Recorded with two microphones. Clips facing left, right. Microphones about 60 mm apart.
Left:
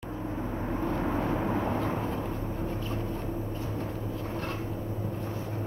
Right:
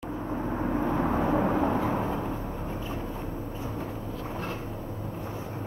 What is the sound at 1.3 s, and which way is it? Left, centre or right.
Vehicle, right.